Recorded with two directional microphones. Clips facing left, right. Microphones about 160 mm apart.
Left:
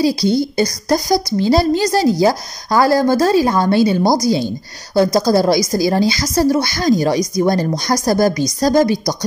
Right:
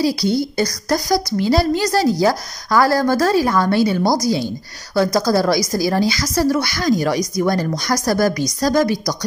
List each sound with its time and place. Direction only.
0.0 s speech: 20° left (ahead or behind)